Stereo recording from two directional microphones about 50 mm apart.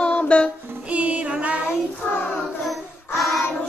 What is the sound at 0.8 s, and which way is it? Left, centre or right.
Child singing, right.